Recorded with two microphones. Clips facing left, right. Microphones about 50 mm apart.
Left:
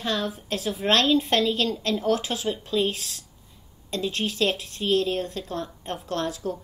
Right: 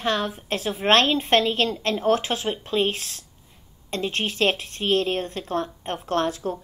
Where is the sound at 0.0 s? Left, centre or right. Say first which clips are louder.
Right 3 dB; right.